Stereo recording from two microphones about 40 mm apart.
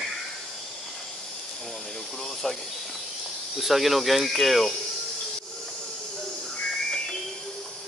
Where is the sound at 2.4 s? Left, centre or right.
Centre.